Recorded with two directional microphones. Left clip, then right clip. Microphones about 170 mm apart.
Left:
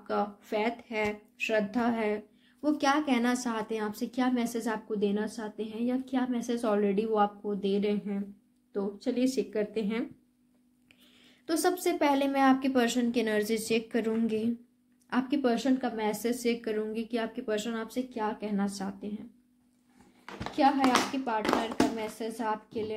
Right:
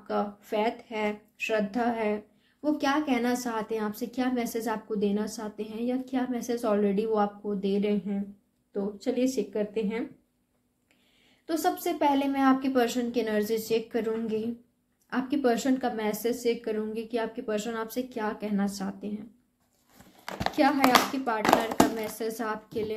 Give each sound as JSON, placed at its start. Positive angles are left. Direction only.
{"t": 0.0, "sound": "a woman's voice", "side_deg": 20}
{"t": 11.4, "sound": "a woman's voice", "side_deg": 30}
{"t": 17.8, "sound": "speech", "side_deg": 10}
{"t": 20.2, "sound": "a sound", "side_deg": -55}
{"t": 22.2, "sound": "a woman's voice", "side_deg": 5}